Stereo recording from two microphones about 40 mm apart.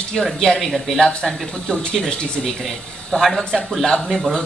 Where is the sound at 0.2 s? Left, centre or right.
Centre.